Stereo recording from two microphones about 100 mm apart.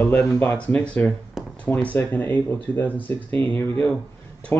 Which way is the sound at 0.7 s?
10° left (ahead or behind).